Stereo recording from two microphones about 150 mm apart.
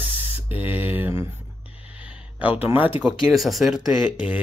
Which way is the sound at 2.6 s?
10° right (ahead or behind).